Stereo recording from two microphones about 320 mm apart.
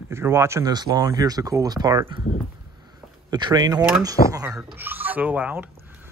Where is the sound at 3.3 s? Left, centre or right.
Centre.